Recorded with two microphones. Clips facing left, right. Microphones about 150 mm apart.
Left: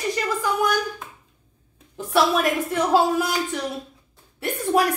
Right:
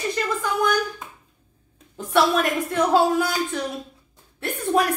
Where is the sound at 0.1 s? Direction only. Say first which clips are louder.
Left 1 dB; 5° left (ahead or behind).